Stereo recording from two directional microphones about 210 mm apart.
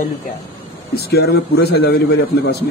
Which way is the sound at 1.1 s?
50° left (ahead or behind).